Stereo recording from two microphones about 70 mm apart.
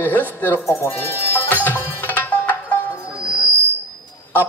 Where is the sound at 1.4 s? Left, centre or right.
Left.